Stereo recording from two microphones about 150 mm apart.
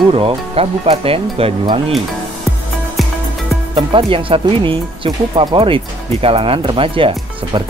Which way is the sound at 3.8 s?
35° right (ahead or behind).